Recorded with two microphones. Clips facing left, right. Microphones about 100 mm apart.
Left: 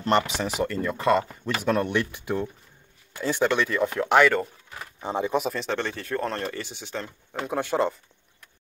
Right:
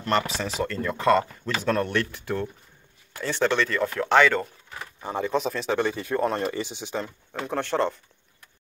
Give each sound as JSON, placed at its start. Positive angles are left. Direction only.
{"t": 0.0, "sound": "speech", "side_deg": 20}
{"t": 5.0, "sound": "speech", "side_deg": 15}
{"t": 5.5, "sound": "speech", "side_deg": -5}
{"t": 7.3, "sound": "speech", "side_deg": 5}